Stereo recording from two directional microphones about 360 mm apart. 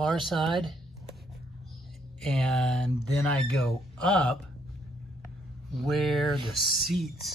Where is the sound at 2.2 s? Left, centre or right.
Centre.